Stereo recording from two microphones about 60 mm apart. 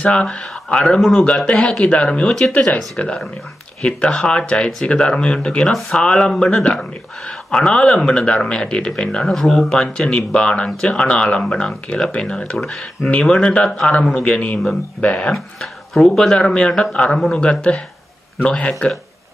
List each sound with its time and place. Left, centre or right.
0.0 s speech: centre
3.8 s speech: centre
14.1 s speech: left
15.3 s speech: centre; by 18.9 s left